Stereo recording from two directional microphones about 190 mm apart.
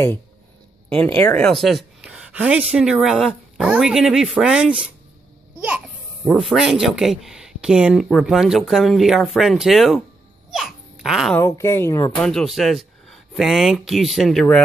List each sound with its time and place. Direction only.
0.8 s speech: 5° left (ahead or behind)
6.3 s speech: centre (ahead or behind)
10.5 s babbling: centre (ahead or behind)
11.3 s speech: 15° left (ahead or behind)
12.1 s speech: 5° left (ahead or behind)